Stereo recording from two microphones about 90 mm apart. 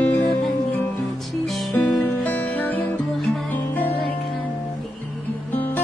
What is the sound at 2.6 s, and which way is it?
Music, 20° left (ahead or behind).